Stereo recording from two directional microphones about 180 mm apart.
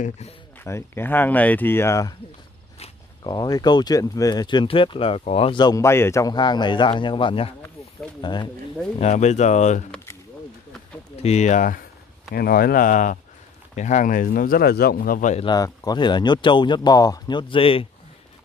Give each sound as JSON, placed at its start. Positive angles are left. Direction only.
{"t": 0.7, "sound": "speech", "side_deg": 15}
{"t": 3.3, "sound": "speech", "side_deg": 20}
{"t": 9.0, "sound": "speech", "side_deg": 40}
{"t": 11.2, "sound": "speech", "side_deg": 40}
{"t": 12.3, "sound": "speech", "side_deg": 55}
{"t": 15.4, "sound": "speech", "side_deg": 20}